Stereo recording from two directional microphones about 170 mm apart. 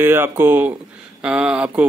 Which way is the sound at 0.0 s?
15° right (ahead or behind).